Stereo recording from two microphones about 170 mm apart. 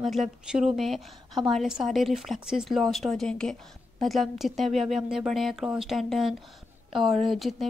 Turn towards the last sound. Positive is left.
turn(degrees=0)  # may be behind; listen again after turning